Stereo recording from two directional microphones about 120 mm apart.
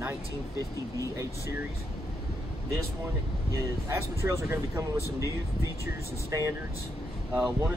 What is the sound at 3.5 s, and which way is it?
Speech, 25° right (ahead or behind).